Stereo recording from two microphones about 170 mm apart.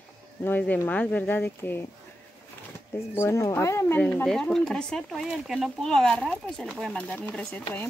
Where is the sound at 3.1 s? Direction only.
15° left (ahead or behind).